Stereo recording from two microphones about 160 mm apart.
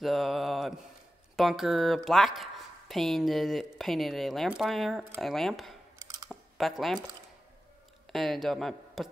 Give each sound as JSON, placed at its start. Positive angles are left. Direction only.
{"t": 0.0, "sound": "mantra", "side_deg": 0}
{"t": 1.3, "sound": "speech", "side_deg": 0}
{"t": 5.9, "sound": "chewing", "side_deg": -20}
{"t": 6.8, "sound": "speech", "side_deg": 0}
{"t": 8.1, "sound": "speech", "side_deg": 0}